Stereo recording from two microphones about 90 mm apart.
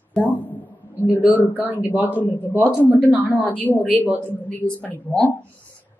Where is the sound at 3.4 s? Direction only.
20° left (ahead or behind).